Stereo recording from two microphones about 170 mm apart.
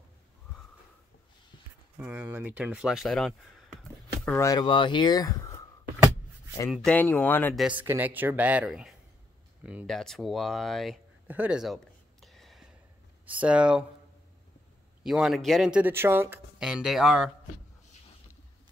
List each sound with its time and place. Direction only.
2.0 s speech: 10° right (ahead or behind)
4.4 s speech: 25° left (ahead or behind)
6.7 s speech: 5° left (ahead or behind)
7.5 s speech: 5° right (ahead or behind)
11.2 s a sound: 10° right (ahead or behind)
13.2 s speech: 10° right (ahead or behind)
15.0 s speech: centre (ahead or behind)